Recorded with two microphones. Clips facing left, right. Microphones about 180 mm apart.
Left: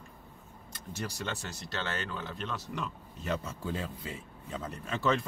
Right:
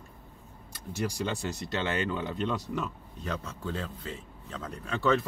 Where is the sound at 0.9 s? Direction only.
10° right (ahead or behind).